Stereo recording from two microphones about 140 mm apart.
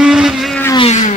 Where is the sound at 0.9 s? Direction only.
60° left (ahead or behind).